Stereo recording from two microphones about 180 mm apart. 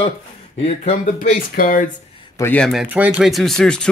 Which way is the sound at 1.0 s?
45° left (ahead or behind).